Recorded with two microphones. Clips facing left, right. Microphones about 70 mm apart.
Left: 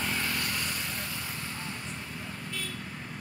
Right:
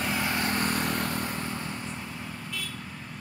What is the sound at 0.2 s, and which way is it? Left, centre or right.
Vehicle, right.